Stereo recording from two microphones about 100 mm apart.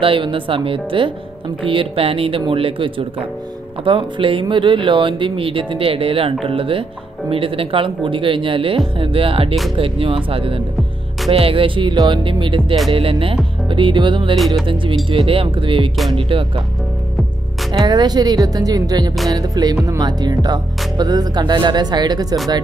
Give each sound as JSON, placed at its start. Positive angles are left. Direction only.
{"t": 0.0, "sound": "speech", "side_deg": -60}
{"t": 14.3, "sound": "music", "side_deg": 0}
{"t": 14.7, "sound": "speech", "side_deg": -60}
{"t": 17.7, "sound": "speech", "side_deg": -45}